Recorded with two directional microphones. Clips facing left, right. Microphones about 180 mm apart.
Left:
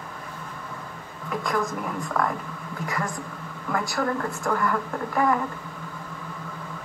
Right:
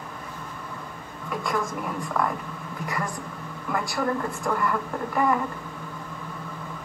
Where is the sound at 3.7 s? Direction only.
5° right (ahead or behind).